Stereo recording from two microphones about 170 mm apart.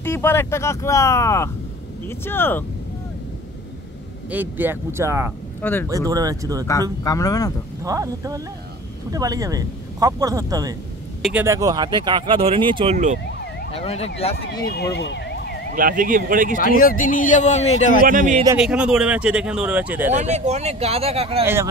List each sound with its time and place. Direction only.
0.0 s speech: 15° left (ahead or behind)
4.3 s speech: 10° right (ahead or behind)
5.6 s speech: 10° left (ahead or behind)
5.9 s speech: 20° right (ahead or behind)
6.7 s speech: 20° left (ahead or behind)
7.8 s speech: 20° right (ahead or behind)
12.9 s speech: 45° right (ahead or behind)
13.7 s emergency vehicle: 35° left (ahead or behind)
14.6 s a sound: 70° left (ahead or behind)
15.7 s speech: 55° right (ahead or behind)
16.5 s speech: 55° left (ahead or behind)
18.0 s speech: 55° right (ahead or behind)
18.6 s speech: 5° right (ahead or behind)
20.1 s speech: 45° right (ahead or behind)